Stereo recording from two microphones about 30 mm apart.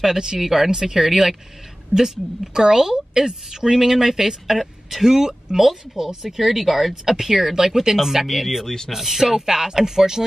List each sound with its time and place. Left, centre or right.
0.0 s speech: centre
8.3 s speech: centre
8.9 s speech: centre